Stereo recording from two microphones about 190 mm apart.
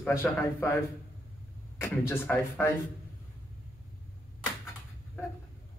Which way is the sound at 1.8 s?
10° left (ahead or behind).